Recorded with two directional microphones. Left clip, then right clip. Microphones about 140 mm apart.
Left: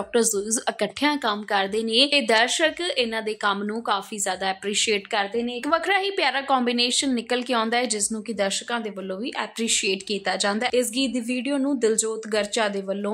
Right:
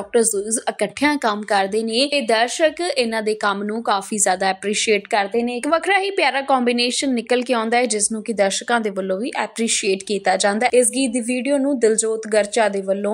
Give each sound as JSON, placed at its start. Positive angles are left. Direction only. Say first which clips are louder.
{"t": 0.1, "sound": "speech", "louder": "right 5 dB", "side_deg": -5}
{"t": 1.0, "sound": "a woman's voice", "louder": "right 5 dB", "side_deg": -35}
{"t": 2.0, "sound": "a woman's voice", "louder": "right 2 dB", "side_deg": -5}
{"t": 2.8, "sound": "speech", "louder": "right 4 dB", "side_deg": -35}
{"t": 4.6, "sound": "a woman's voice", "louder": "right 5 dB", "side_deg": -25}